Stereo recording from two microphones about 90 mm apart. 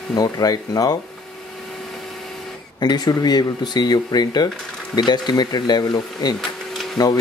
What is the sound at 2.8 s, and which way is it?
Speech, 50° left (ahead or behind).